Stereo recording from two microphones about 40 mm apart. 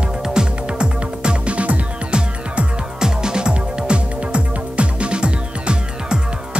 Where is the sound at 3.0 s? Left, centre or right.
Centre.